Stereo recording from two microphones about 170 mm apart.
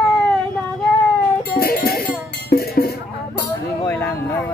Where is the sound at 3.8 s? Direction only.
15° left (ahead or behind).